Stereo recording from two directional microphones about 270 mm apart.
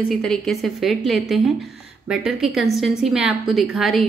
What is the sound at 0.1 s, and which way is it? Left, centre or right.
A woman's voice, centre.